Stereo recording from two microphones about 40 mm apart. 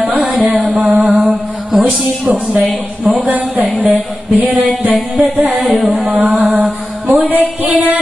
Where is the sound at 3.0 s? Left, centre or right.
Right.